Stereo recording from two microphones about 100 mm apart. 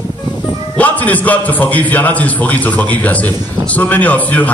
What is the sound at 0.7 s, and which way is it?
A man's voice, 15° left (ahead or behind).